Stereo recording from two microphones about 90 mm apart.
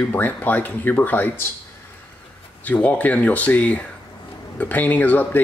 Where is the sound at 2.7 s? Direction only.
15° left (ahead or behind).